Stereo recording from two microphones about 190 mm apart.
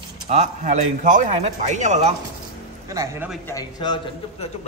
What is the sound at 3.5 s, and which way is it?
Speech, 20° left (ahead or behind).